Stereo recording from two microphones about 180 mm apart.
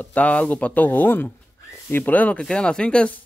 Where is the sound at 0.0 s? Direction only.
10° left (ahead or behind).